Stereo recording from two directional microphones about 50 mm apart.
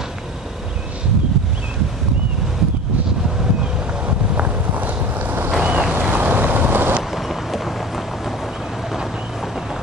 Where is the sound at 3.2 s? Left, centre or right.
Centre; by 5.4 s right.